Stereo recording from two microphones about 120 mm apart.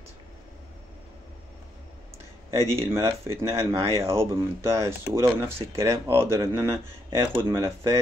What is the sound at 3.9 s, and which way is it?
Speech, 25° right (ahead or behind).